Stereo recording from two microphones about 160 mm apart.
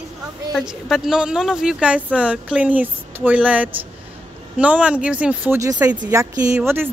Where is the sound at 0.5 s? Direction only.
Centre (ahead or behind).